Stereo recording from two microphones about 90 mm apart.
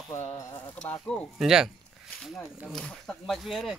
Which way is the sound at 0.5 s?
15° left (ahead or behind).